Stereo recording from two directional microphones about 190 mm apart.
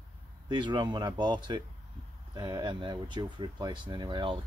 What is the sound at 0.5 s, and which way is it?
Speech, 25° right (ahead or behind).